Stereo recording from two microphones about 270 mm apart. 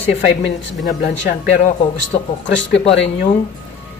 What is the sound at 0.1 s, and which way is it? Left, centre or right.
Speech, left.